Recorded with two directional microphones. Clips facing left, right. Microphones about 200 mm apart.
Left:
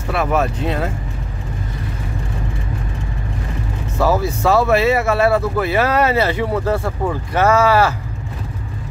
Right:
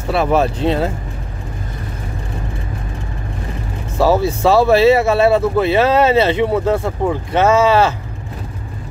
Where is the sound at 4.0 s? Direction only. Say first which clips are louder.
Right 3 dB; 30° right (ahead or behind).